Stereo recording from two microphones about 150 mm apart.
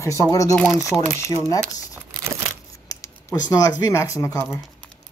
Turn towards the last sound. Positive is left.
turn(degrees=20)  # may be behind; listen again after turning